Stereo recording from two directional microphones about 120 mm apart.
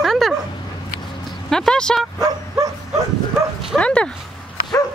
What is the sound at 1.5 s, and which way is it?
Speech, 5° left (ahead or behind).